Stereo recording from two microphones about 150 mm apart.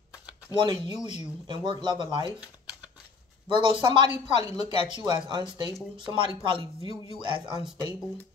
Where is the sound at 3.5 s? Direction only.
30° right (ahead or behind).